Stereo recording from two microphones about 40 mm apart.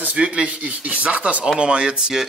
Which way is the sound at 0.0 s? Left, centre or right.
Right.